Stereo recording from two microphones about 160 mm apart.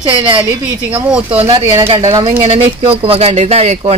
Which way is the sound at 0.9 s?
10° right (ahead or behind).